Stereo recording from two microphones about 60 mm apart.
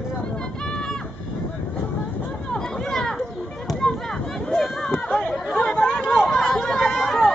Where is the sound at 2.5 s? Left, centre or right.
Centre.